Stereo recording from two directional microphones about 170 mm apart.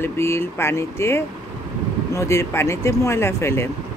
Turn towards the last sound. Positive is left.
turn(degrees=15)  # may be behind; listen again after turning